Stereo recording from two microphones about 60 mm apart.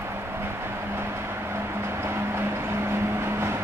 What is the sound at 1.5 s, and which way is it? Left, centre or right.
Vehicle, right.